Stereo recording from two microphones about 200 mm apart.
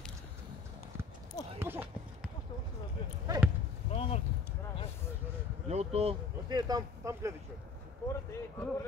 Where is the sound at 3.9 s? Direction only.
30° left (ahead or behind).